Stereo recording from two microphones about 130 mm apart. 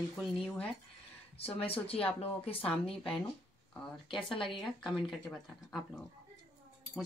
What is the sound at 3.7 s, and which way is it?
Speech, 5° left (ahead or behind).